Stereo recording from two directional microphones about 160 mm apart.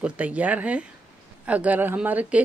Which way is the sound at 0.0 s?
10° right (ahead or behind).